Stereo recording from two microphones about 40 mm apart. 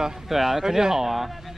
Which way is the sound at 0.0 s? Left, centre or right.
Centre.